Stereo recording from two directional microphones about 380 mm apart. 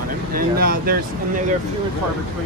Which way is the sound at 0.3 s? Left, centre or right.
Right.